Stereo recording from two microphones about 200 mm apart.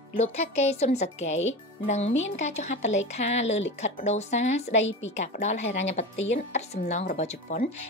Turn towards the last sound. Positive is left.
turn(degrees=35)  # may be behind; listen again after turning